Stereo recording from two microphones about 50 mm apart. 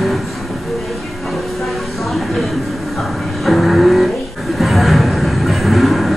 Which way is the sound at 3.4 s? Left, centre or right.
Centre.